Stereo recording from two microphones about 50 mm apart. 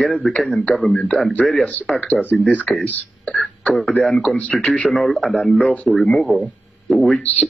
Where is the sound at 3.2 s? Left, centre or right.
Centre.